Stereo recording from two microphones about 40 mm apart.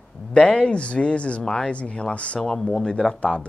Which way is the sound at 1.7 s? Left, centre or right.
Left.